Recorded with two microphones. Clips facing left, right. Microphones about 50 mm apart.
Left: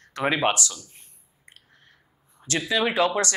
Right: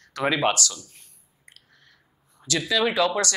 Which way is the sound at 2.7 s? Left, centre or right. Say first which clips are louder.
Even; left.